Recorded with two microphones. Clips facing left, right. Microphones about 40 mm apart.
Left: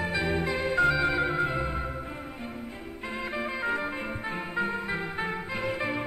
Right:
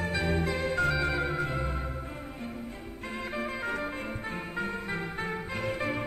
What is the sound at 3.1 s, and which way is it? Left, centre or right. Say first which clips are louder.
Music: left 2 dB; centre.